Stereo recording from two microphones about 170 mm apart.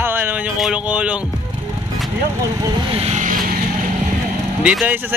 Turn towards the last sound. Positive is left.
turn(degrees=-5)  # may be behind; listen again after turning